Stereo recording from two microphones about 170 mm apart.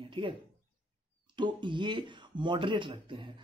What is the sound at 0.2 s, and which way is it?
Speech, 30° right (ahead or behind).